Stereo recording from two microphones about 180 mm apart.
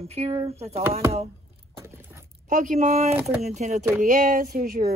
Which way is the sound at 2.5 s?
45° right (ahead or behind).